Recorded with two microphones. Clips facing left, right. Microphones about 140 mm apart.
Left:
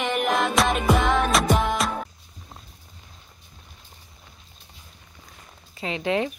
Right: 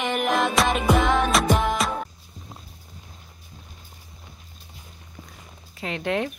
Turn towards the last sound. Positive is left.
turn(degrees=0)  # may be behind; listen again after turning